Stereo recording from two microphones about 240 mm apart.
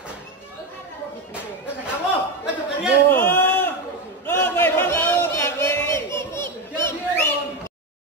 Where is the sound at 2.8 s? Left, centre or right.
Centre.